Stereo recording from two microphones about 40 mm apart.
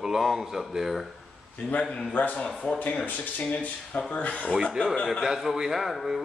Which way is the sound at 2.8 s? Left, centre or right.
Left.